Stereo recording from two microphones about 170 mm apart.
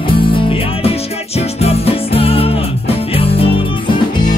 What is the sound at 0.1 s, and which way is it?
Music, 30° left (ahead or behind).